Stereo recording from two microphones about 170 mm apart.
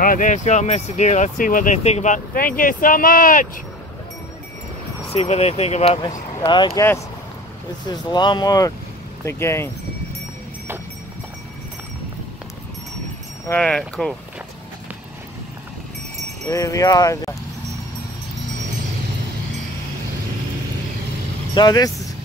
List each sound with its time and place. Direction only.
0.0 s speech: 55° left (ahead or behind)
5.1 s speech: 35° left (ahead or behind)
6.4 s speech: 25° left (ahead or behind)
13.5 s speech: 5° left (ahead or behind)
16.4 s speech: 20° left (ahead or behind)
21.5 s speech: 25° left (ahead or behind)